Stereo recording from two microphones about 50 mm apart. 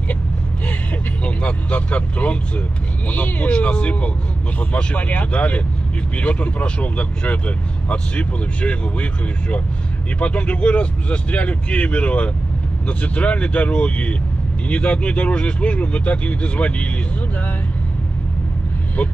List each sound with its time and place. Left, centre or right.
1.2 s speech: left